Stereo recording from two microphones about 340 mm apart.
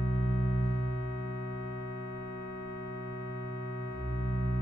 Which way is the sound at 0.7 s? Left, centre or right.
Left.